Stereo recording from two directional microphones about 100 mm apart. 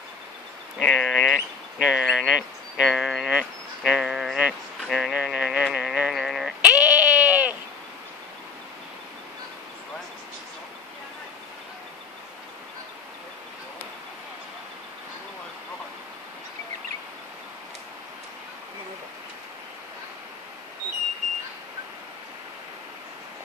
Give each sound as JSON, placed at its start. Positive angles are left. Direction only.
{"t": 0.7, "sound": "speech", "side_deg": 5}
{"t": 4.8, "sound": "a sound", "side_deg": 0}
{"t": 6.7, "sound": "sheep", "side_deg": -15}